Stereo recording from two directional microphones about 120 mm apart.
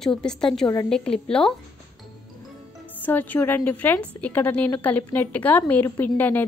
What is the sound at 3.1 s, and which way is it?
A woman's voice, 15° left (ahead or behind).